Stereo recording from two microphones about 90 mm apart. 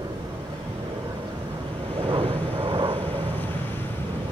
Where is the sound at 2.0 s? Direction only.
90° right.